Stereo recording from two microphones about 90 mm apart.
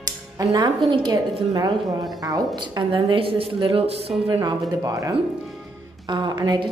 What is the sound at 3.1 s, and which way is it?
Speech, 85° right.